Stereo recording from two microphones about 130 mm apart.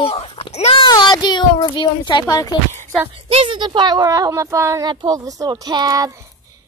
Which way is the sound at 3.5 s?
35° right (ahead or behind).